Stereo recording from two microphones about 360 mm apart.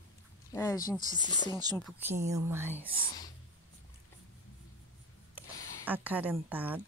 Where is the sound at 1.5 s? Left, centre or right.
Centre.